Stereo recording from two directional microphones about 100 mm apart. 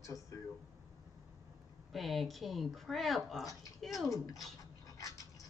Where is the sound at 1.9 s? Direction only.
Centre (ahead or behind).